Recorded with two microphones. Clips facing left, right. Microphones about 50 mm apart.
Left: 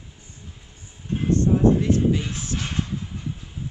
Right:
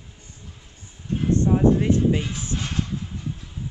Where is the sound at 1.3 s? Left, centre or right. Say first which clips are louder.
Even; right.